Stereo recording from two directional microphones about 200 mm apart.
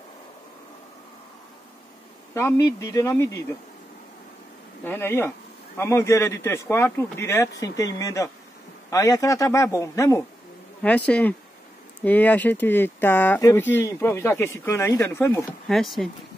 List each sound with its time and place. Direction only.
2.3 s speech: 15° left (ahead or behind)
4.8 s speech: 10° left (ahead or behind)
15.7 s speech: centre (ahead or behind)